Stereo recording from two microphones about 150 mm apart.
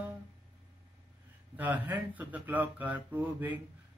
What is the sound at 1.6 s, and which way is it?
Speech, 10° right (ahead or behind).